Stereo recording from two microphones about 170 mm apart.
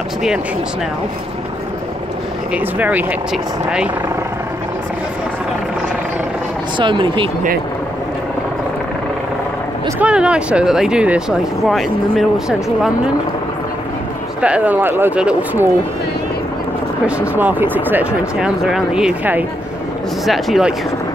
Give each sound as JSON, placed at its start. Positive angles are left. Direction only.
{"t": 2.5, "sound": "speech", "side_deg": -10}
{"t": 6.8, "sound": "speech", "side_deg": -30}
{"t": 9.9, "sound": "speech", "side_deg": -5}
{"t": 14.4, "sound": "speech", "side_deg": -5}
{"t": 17.4, "sound": "speech", "side_deg": -10}